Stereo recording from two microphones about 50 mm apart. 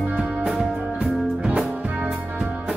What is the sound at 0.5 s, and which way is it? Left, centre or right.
Music, centre.